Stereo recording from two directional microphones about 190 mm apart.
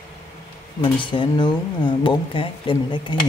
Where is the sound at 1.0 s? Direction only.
25° left (ahead or behind).